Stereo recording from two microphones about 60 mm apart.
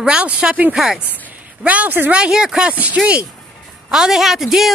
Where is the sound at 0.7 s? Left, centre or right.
Centre.